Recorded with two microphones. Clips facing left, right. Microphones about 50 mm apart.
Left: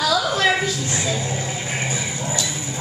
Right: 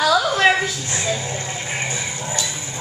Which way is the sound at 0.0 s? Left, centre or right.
Right.